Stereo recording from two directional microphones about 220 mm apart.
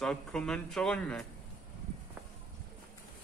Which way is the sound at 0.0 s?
5° left (ahead or behind).